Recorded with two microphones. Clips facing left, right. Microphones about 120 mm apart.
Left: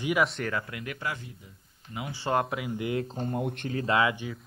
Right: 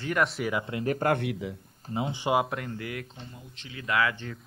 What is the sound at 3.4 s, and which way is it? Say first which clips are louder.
Speech: left 16 dB; 55° left (ahead or behind).